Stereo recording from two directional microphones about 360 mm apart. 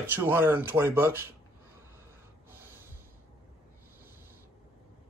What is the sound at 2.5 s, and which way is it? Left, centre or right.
Snort, centre.